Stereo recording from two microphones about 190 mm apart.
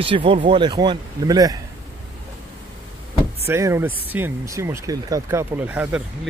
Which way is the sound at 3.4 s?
15° right (ahead or behind).